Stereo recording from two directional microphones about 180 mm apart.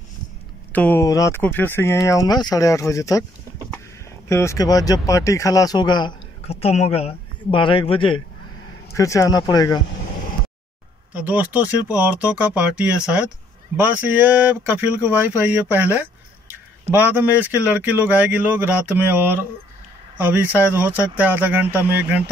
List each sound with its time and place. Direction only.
0.7 s speech: 10° left (ahead or behind)
4.3 s speech: 15° left (ahead or behind)
8.9 s speech: 15° left (ahead or behind)
11.2 s speech: 10° right (ahead or behind)